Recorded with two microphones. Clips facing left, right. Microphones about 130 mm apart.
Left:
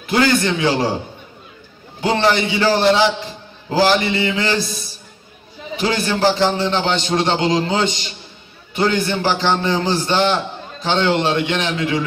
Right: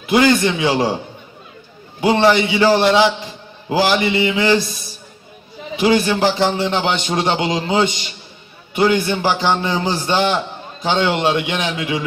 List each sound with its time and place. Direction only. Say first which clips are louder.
0.1 s a man's voice: right 2 dB; 15° right (ahead or behind)
2.0 s a man's voice: right 3 dB; 15° right (ahead or behind)
5.8 s a man's voice: right 4 dB; 15° right (ahead or behind)